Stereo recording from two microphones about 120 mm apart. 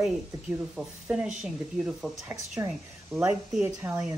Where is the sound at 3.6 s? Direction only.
20° right (ahead or behind).